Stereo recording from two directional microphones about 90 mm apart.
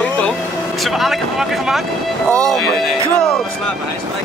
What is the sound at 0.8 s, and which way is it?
A man's voice, centre (ahead or behind).